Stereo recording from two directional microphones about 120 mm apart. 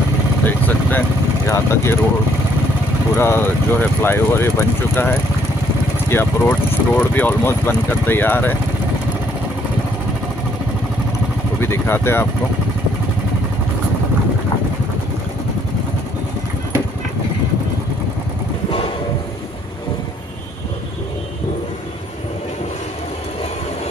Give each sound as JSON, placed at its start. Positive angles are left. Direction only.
{"t": 0.5, "sound": "speech", "side_deg": 15}
{"t": 3.2, "sound": "speech", "side_deg": 20}
{"t": 11.6, "sound": "speech", "side_deg": 20}